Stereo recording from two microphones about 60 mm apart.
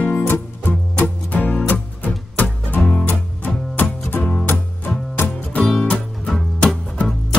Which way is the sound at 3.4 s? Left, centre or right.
Left.